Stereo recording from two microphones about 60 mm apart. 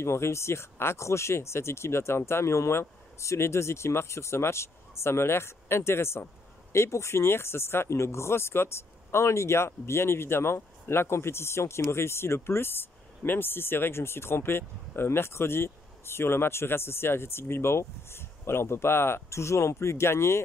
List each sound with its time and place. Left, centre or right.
0.0 s speech: left